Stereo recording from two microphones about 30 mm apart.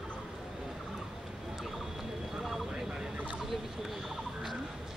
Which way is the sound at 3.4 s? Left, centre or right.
Centre.